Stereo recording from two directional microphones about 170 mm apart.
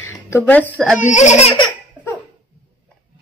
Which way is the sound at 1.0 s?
45° left (ahead or behind).